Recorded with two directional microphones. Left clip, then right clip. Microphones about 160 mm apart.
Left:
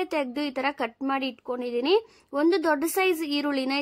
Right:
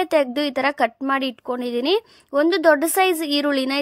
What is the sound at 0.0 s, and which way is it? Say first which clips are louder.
A woman's voice: right 9 dB; 35° right (ahead or behind).